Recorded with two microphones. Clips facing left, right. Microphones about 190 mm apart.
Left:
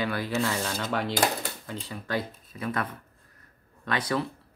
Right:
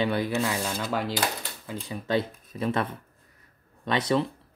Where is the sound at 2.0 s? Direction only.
20° right (ahead or behind).